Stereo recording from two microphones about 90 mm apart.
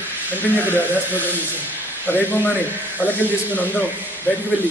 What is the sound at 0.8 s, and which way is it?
Speech, 20° left (ahead or behind).